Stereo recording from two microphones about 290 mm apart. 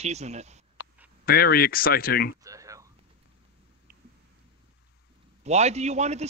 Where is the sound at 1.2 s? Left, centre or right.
Left.